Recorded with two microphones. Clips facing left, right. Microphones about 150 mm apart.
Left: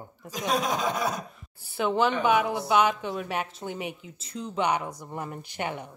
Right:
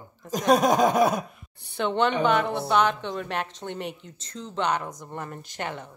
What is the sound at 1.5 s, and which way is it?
A woman's voice, 5° left (ahead or behind).